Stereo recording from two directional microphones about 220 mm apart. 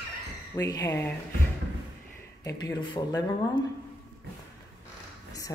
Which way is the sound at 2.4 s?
20° left (ahead or behind).